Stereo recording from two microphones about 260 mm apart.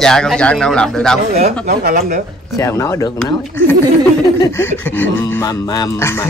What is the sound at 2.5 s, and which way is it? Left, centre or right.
Speech, centre.